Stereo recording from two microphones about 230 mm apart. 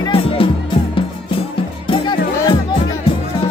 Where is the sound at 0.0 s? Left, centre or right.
Left.